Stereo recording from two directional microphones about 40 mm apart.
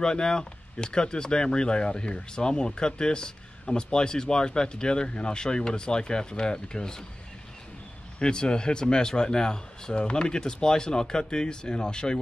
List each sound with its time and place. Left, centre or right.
0.0 s speech: centre
8.2 s speech: left